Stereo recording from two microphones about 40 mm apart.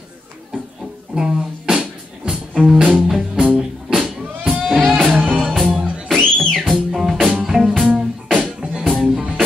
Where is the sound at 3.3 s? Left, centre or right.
Right.